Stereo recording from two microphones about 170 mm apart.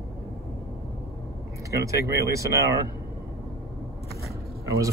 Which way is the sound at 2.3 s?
20° right (ahead or behind).